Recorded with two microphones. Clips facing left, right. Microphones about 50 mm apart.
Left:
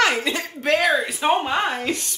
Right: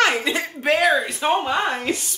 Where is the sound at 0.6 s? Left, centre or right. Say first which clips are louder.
Right 1 dB; centre.